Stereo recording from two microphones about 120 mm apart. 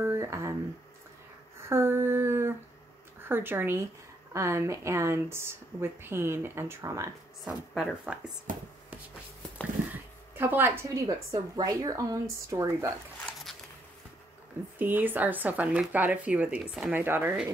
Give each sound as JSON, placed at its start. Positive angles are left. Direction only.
{"t": 0.0, "sound": "a sound", "side_deg": -25}
{"t": 1.7, "sound": "speech", "side_deg": -20}
{"t": 7.4, "sound": "speech", "side_deg": -5}
{"t": 8.5, "sound": "speech", "side_deg": -90}
{"t": 10.3, "sound": "a woman's voice", "side_deg": -15}
{"t": 13.5, "sound": "a sound", "side_deg": 0}
{"t": 14.8, "sound": "speech", "side_deg": -15}